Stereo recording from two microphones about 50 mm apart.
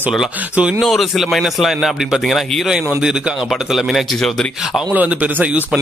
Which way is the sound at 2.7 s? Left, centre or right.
Centre.